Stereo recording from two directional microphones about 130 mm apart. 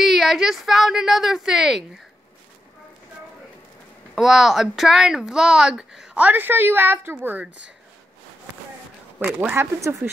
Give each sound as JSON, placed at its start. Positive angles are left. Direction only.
{"t": 0.0, "sound": "speech", "side_deg": 0}
{"t": 4.1, "sound": "speech", "side_deg": -5}
{"t": 9.2, "sound": "speech", "side_deg": -15}